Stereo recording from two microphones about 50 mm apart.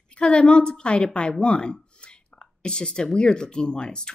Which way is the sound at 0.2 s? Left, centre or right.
Centre.